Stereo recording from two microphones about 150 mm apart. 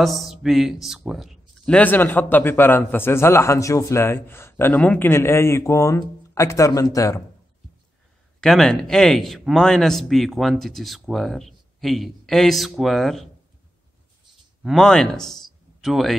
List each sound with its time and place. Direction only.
0.0 s a man's voice: centre (ahead or behind)
1.7 s a man's voice: 10° left (ahead or behind)
8.4 s a man's voice: 5° left (ahead or behind)
14.6 s speech: centre (ahead or behind)